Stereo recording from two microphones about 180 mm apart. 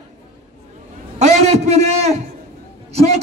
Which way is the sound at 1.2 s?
35° right (ahead or behind).